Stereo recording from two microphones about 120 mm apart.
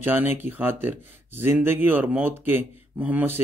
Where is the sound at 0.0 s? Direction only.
15° right (ahead or behind).